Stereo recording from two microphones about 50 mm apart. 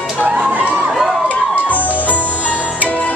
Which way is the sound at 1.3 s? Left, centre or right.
Left.